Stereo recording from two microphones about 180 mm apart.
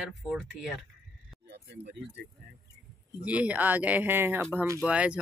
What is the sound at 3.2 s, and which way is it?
Speech, 5° right (ahead or behind).